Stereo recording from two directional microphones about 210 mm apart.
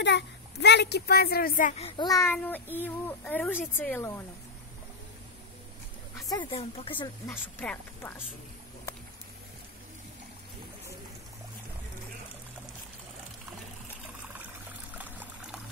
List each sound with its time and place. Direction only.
0.0 s a child's voice: 55° left (ahead or behind); by 4.2 s 10° left (ahead or behind)
6.2 s speech: 20° left (ahead or behind)
7.2 s a child's voice: 10° left (ahead or behind)
15.0 s pour: 10° right (ahead or behind)